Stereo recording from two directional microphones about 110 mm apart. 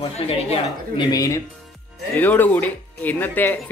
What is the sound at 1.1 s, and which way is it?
Speech, 30° left (ahead or behind).